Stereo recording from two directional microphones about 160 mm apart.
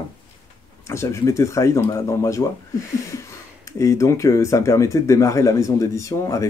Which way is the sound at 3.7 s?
20° left (ahead or behind).